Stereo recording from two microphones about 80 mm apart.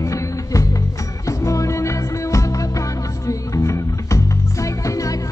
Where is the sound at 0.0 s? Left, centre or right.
Left.